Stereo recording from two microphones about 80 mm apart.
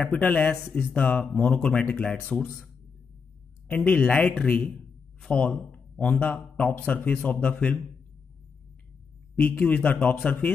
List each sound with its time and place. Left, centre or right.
0.0 s a man's voice: centre
1.3 s a man's voice: centre
3.6 s a man's voice: left
9.4 s a man's voice: centre